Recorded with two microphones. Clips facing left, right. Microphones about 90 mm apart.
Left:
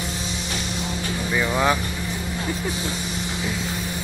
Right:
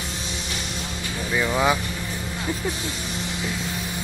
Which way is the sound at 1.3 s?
Centre (ahead or behind).